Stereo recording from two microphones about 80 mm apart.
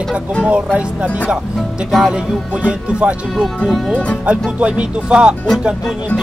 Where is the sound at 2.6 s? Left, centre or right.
Centre.